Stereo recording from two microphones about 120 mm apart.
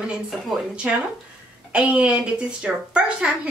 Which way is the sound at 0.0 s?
5° right (ahead or behind).